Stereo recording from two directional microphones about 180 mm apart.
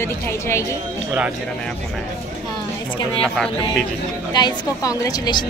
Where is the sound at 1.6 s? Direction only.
5° left (ahead or behind).